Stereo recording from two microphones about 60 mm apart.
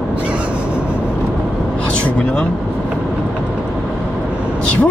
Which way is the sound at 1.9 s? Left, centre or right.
Left.